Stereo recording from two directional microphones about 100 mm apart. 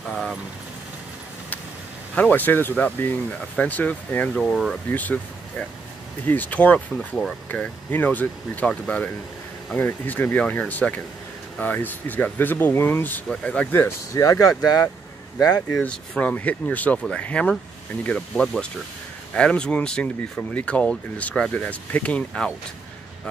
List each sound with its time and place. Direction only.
0.1 s speech: centre (ahead or behind)
2.1 s speech: 15° left (ahead or behind)
14.1 s speech: 35° left (ahead or behind)
15.8 s speech: 15° left (ahead or behind)